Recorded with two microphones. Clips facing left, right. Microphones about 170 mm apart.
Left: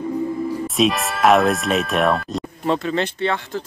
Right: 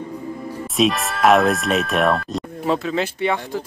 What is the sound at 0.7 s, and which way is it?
Speech, centre (ahead or behind).